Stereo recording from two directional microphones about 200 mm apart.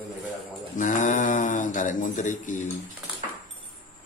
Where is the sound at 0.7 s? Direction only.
40° left (ahead or behind).